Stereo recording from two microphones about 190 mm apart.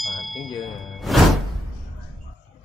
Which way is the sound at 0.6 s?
Centre (ahead or behind).